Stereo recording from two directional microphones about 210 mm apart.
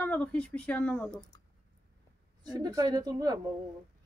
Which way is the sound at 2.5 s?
15° right (ahead or behind).